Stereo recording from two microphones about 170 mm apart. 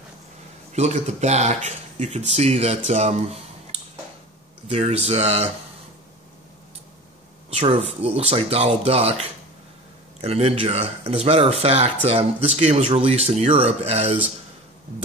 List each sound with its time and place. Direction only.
0.7 s speech: 40° right (ahead or behind)
4.6 s speech: 40° right (ahead or behind)
7.5 s speech: 35° right (ahead or behind)